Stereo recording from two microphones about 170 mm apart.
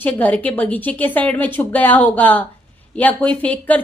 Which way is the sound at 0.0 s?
10° left (ahead or behind).